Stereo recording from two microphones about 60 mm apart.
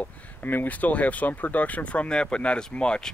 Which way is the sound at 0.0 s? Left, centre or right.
Left.